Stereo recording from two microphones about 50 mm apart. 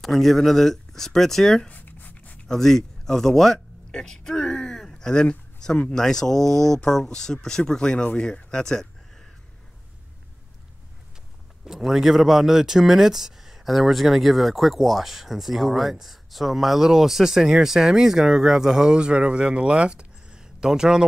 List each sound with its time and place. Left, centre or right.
0.0 s speech: centre
1.7 s writing: left
2.4 s speech: centre
3.9 s a sound: centre
5.9 s speech: centre
11.6 s speech: centre